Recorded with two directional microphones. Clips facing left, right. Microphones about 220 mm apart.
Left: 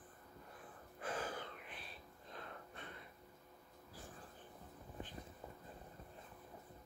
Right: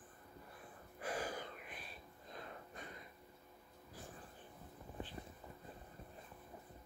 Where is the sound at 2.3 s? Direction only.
10° right (ahead or behind).